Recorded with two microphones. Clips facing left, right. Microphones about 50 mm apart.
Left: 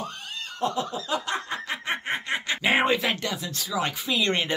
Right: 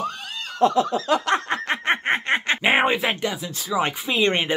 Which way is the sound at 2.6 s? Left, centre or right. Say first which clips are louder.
Right 1 dB; right.